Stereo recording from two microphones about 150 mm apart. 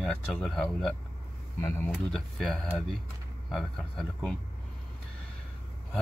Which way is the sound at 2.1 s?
Centre (ahead or behind).